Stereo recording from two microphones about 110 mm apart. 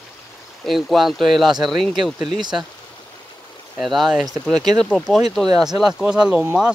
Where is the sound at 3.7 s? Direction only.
Centre (ahead or behind).